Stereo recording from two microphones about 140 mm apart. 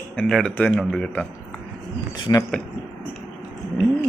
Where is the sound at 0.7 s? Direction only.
5° right (ahead or behind).